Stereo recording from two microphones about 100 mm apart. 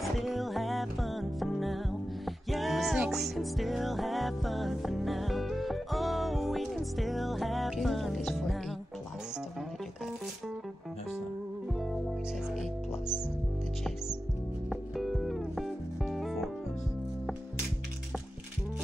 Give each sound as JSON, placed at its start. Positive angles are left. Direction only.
{"t": 0.2, "sound": "music", "side_deg": 0}
{"t": 14.7, "sound": "music", "side_deg": 0}